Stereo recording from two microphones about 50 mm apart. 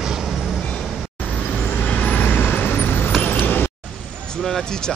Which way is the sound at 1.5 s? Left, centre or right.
Left.